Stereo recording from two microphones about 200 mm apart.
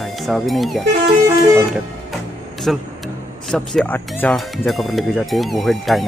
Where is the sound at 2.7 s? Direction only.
Centre (ahead or behind).